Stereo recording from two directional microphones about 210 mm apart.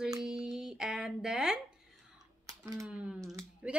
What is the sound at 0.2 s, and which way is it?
Music, 5° right (ahead or behind).